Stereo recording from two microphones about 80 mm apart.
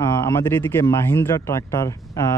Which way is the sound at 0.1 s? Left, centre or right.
Left.